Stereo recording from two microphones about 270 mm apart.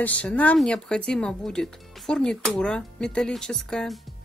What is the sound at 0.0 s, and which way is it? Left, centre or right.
Speech, centre.